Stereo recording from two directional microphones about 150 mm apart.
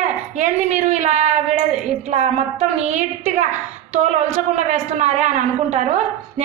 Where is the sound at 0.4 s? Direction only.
50° right (ahead or behind).